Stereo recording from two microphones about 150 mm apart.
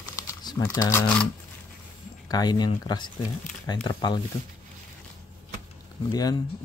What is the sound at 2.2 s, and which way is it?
Speech, 25° left (ahead or behind).